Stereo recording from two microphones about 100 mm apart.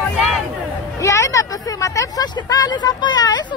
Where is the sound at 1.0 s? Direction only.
30° left (ahead or behind).